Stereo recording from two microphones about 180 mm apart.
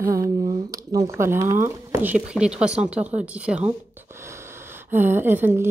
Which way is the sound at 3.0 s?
40° right (ahead or behind).